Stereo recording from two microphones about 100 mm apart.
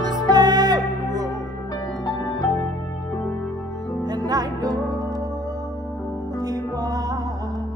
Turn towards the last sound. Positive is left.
turn(degrees=-40)  # may be behind; listen again after turning